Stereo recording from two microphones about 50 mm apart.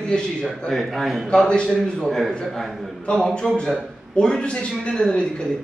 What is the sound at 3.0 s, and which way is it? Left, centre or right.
A man's voice, centre.